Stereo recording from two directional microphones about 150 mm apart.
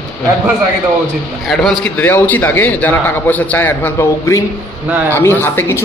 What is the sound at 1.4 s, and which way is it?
Speech, 5° left (ahead or behind).